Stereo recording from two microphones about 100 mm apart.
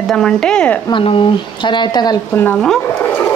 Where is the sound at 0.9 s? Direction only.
60° left (ahead or behind).